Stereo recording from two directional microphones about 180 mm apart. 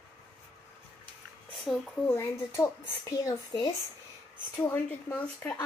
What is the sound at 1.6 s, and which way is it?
Speech, 5° left (ahead or behind).